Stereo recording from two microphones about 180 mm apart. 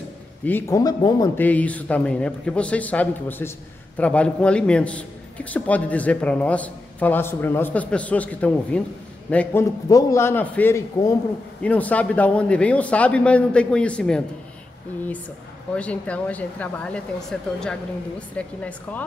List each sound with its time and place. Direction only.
0.5 s a man's voice: 15° left (ahead or behind)
1.4 s a man's voice: 10° left (ahead or behind)
15.7 s a man's voice: 5° left (ahead or behind)